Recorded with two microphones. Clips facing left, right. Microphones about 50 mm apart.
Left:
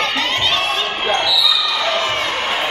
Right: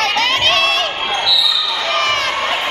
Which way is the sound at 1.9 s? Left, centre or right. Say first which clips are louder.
Right 2 dB; right.